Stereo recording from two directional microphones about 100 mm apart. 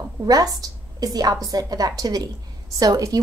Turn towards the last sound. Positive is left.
turn(degrees=-40)  # may be behind; listen again after turning